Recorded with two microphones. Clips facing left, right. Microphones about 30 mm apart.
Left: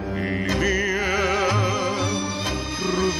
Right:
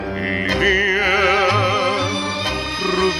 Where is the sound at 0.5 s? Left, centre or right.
Right.